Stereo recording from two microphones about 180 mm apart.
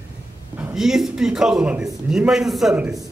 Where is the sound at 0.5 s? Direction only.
Centre (ahead or behind).